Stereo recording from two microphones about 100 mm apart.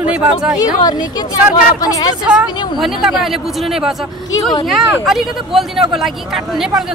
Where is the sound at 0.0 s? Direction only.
10° right (ahead or behind).